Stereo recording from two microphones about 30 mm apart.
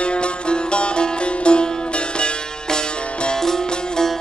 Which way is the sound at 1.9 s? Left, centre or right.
Left.